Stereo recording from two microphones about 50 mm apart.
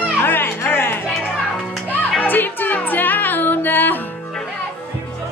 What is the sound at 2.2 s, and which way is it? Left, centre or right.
Music, left.